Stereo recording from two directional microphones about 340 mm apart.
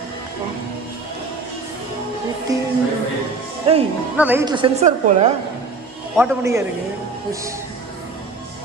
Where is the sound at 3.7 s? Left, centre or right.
Centre.